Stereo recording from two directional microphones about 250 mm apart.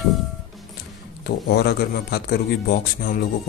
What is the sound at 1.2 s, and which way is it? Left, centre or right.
Speech, left.